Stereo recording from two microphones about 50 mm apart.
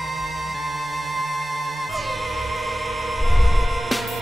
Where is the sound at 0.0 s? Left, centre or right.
Centre.